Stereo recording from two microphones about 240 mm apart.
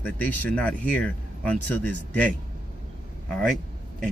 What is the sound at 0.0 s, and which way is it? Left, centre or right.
Speech, centre.